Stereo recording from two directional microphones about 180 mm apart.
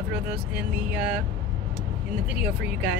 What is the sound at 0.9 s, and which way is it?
Speech, 10° right (ahead or behind).